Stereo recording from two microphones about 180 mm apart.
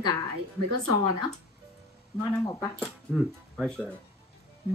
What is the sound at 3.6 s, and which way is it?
Speech, 5° left (ahead or behind).